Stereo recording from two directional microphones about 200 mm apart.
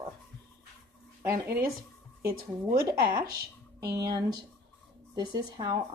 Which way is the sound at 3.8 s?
20° right (ahead or behind).